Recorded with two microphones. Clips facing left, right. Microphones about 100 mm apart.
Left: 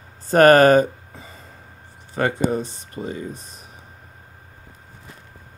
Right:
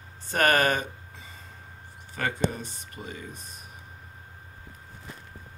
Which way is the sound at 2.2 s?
35° left (ahead or behind).